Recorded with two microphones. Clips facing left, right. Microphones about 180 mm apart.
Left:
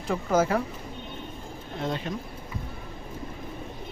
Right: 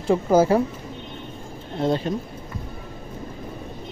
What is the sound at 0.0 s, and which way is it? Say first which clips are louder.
Speech: right 7 dB; 30° right (ahead or behind).